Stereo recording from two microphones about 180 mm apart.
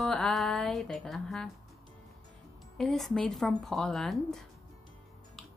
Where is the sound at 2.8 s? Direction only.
Centre (ahead or behind).